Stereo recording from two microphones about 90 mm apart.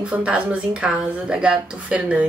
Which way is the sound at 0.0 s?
15° right (ahead or behind).